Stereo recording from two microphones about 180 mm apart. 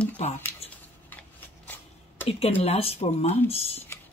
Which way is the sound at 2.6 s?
35° left (ahead or behind).